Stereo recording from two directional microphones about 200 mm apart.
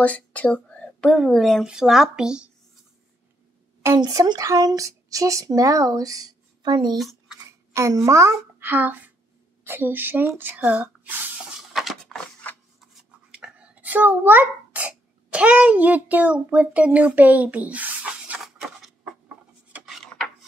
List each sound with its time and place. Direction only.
0.0 s speech: 5° left (ahead or behind)
3.8 s speech: 20° right (ahead or behind)
7.0 s a sound: centre (ahead or behind)
7.3 s speech: 15° right (ahead or behind)
11.7 s a sound: centre (ahead or behind)
13.3 s sneeze: 5° right (ahead or behind)